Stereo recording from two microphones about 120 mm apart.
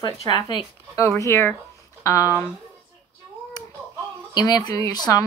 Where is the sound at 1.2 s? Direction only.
20° left (ahead or behind).